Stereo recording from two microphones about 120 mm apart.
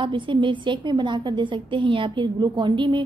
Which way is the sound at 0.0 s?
45° right (ahead or behind).